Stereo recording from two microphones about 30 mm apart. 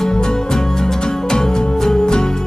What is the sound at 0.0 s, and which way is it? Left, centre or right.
Music, left.